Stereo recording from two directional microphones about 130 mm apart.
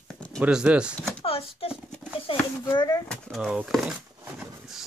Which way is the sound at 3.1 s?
Centre (ahead or behind).